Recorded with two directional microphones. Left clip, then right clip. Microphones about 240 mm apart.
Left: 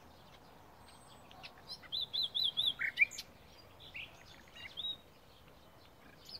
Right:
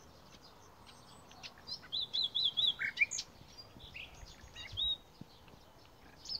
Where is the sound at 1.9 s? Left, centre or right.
Left.